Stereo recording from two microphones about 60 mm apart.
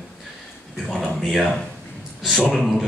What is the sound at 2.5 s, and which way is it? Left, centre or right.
Speech, centre.